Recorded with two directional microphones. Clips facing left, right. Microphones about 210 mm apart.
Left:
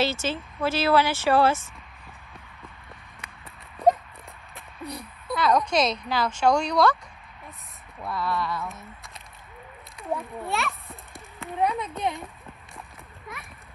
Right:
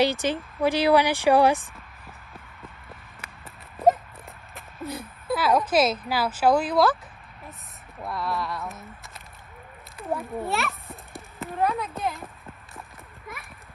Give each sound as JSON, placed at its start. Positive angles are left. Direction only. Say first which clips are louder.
{"t": 0.0, "sound": "speech", "louder": "right 3 dB", "side_deg": -15}
{"t": 3.7, "sound": "a sound", "louder": "right 1 dB", "side_deg": 0}
{"t": 4.6, "sound": "a woman's voice", "louder": "right 3 dB", "side_deg": 0}
{"t": 8.1, "sound": "speech", "louder": "left 1 dB", "side_deg": 0}
{"t": 9.9, "sound": "children playing", "louder": "right 1 dB", "side_deg": 0}
{"t": 10.4, "sound": "a child's voice", "louder": "right 1 dB", "side_deg": 0}
{"t": 13.3, "sound": "clip-clop", "louder": "even", "side_deg": 0}